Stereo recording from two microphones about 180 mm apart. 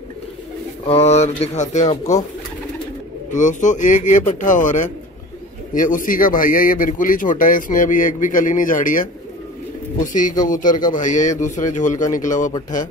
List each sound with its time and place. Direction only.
0.8 s speech: 35° left (ahead or behind)
3.3 s a man's voice: 45° left (ahead or behind)